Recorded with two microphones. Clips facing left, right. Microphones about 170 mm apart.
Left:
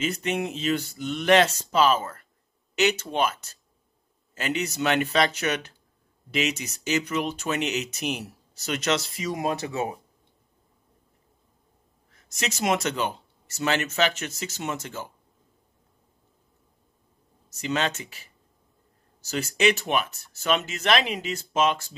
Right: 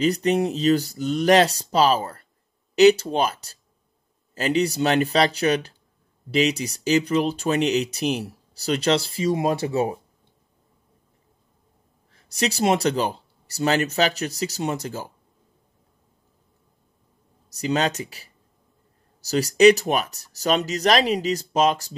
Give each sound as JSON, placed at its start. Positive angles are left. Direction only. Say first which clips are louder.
{"t": 0.0, "sound": "speech", "louder": "right 7 dB", "side_deg": -35}
{"t": 12.1, "sound": "speech", "louder": "right 7 dB", "side_deg": -35}
{"t": 17.5, "sound": "speech", "louder": "right 4 dB", "side_deg": -35}